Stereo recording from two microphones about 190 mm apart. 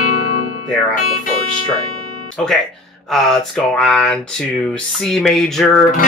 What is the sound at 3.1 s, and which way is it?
Speech, centre (ahead or behind).